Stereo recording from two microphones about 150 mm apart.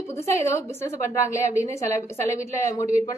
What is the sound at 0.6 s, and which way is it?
A woman's voice, 20° left (ahead or behind).